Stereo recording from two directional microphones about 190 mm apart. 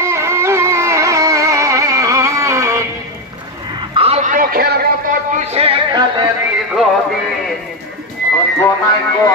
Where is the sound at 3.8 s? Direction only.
30° right (ahead or behind).